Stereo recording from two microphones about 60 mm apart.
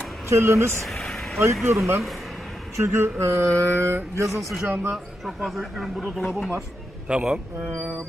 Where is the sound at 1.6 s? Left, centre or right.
Right.